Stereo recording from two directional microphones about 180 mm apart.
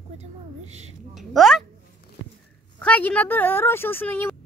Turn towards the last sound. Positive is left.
turn(degrees=10)  # may be behind; listen again after turning